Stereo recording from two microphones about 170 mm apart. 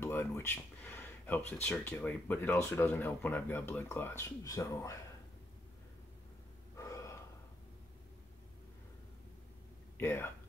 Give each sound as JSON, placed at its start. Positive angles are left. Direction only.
{"t": 0.0, "sound": "speech", "side_deg": 15}
{"t": 6.8, "sound": "gasp", "side_deg": 20}
{"t": 9.9, "sound": "speech", "side_deg": 15}